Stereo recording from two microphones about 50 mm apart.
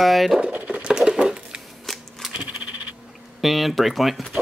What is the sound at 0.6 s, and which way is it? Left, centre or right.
Patter, centre.